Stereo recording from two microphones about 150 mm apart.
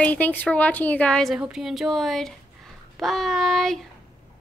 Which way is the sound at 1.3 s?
5° right (ahead or behind).